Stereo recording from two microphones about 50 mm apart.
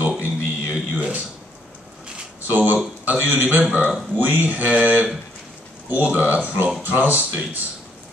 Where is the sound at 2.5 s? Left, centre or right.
Right.